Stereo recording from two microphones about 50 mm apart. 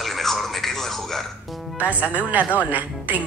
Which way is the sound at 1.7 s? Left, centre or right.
Right.